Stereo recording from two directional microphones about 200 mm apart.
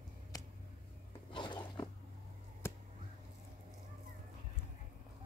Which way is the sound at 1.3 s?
20° left (ahead or behind).